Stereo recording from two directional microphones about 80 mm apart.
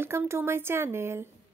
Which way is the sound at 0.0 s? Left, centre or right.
Right.